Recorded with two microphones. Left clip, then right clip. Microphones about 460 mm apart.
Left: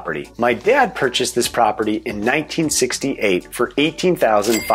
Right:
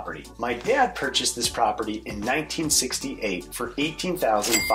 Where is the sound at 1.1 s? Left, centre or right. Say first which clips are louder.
Left 6 dB; left.